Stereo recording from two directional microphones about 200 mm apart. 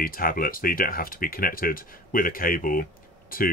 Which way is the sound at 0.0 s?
45° left (ahead or behind).